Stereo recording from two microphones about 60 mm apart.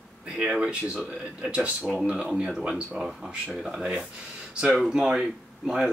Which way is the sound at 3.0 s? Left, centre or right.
Centre.